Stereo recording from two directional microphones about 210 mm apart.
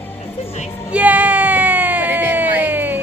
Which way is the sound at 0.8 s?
5° right (ahead or behind).